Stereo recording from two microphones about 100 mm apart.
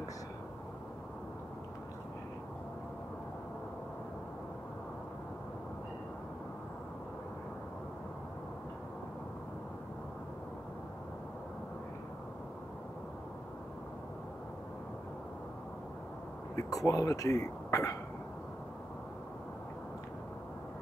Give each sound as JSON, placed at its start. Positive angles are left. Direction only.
{"t": 16.5, "sound": "speech", "side_deg": 30}